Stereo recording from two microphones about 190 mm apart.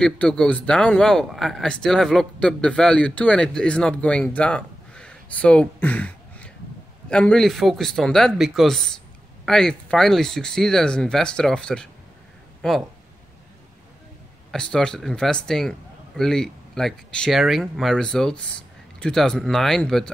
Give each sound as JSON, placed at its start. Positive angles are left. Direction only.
{"t": 0.0, "sound": "speech", "side_deg": 5}
{"t": 14.5, "sound": "speech", "side_deg": 5}